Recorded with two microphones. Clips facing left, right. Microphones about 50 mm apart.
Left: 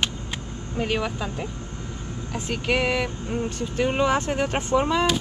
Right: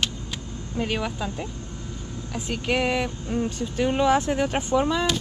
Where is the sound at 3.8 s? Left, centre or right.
Left.